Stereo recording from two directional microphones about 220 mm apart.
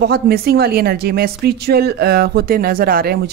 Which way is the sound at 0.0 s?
45° right (ahead or behind).